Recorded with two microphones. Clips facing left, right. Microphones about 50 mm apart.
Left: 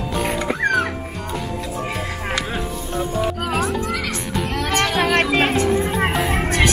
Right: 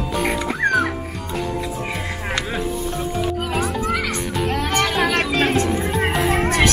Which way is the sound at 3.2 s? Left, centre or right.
Centre.